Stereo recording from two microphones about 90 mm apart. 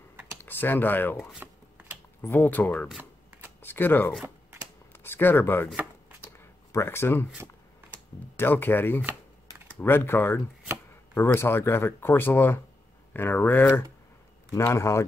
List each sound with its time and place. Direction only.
0.4 s speech: 20° left (ahead or behind)
1.4 s a sound: 20° right (ahead or behind)
2.2 s speech: 20° left (ahead or behind)
3.0 s shuffling cards: 20° right (ahead or behind)
3.6 s speech: 25° left (ahead or behind)
6.2 s a sound: 25° left (ahead or behind)
8.4 s speech: 25° left (ahead or behind)